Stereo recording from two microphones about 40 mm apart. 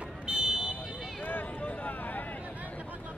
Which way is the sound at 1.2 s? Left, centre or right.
Left.